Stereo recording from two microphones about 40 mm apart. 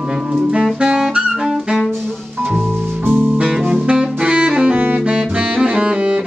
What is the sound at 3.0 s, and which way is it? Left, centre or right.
Music, right.